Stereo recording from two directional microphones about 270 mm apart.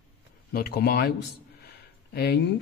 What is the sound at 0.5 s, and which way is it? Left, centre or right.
Speech, left.